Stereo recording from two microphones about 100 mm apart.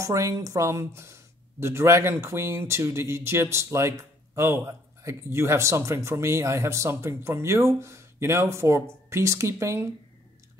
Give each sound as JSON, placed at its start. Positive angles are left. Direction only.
{"t": 0.0, "sound": "speech", "side_deg": -30}